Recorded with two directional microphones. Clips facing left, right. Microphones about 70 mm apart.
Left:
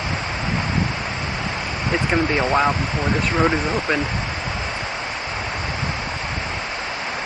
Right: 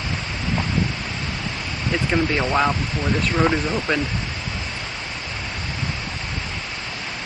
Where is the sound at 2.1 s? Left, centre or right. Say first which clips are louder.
Left 1 dB; centre.